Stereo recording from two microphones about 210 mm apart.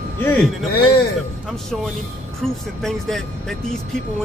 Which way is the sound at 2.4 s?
Centre (ahead or behind).